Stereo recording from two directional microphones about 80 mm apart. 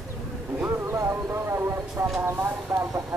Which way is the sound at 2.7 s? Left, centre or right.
Right.